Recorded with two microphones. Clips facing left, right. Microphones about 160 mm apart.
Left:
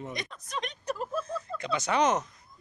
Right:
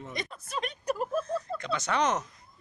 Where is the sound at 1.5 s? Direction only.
5° left (ahead or behind).